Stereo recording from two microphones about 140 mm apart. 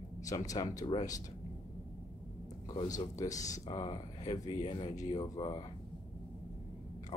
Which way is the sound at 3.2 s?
25° left (ahead or behind).